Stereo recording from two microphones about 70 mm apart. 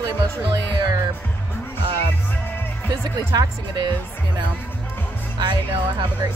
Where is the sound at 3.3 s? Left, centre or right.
Right.